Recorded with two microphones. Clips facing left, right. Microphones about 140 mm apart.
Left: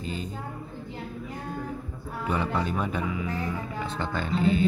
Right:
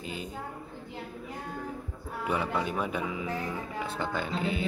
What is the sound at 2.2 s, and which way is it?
Speech, 10° right (ahead or behind).